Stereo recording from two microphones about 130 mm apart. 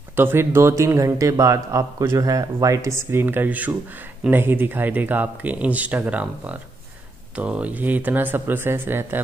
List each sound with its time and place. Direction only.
0.1 s a man's voice: 15° right (ahead or behind)